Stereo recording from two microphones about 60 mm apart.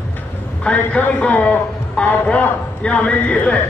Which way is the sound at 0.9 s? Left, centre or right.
Left.